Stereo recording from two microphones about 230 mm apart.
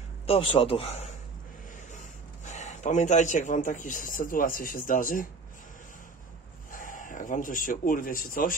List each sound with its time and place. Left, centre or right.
0.3 s a man's voice: left
6.7 s speech: left